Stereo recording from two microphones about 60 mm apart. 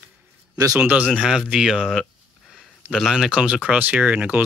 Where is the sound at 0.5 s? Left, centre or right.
Right.